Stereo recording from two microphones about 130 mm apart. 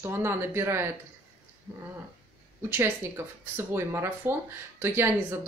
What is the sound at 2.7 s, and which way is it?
Speech, 20° right (ahead or behind).